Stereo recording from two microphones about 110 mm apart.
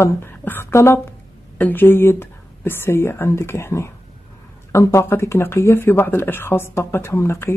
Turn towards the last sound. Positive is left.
turn(degrees=25)  # may be behind; listen again after turning